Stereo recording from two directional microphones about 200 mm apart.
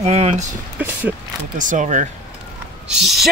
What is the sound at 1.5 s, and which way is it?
Speech, 40° right (ahead or behind).